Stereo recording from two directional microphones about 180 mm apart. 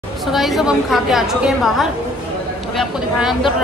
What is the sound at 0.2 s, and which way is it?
A woman's voice, centre (ahead or behind).